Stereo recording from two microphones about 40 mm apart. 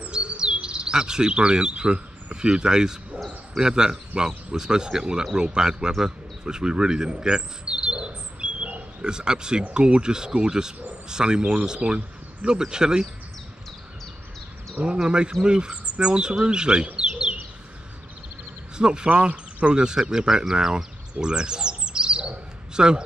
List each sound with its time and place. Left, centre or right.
0.1 s chirp: right
3.5 s speech: centre
15.0 s a man's voice: right
18.8 s a man's voice: right
20.7 s bird: right
22.8 s a man's voice: right